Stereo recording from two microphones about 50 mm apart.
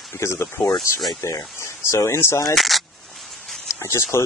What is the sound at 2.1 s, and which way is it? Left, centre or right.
Speech, left.